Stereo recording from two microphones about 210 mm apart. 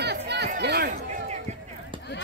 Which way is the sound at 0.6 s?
50° right (ahead or behind).